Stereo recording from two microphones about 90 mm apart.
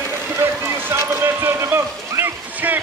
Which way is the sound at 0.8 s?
25° right (ahead or behind).